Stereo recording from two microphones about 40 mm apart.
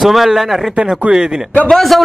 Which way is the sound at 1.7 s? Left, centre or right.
Centre.